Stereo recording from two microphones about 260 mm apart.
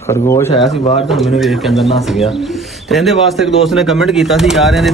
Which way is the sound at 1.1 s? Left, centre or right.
Centre.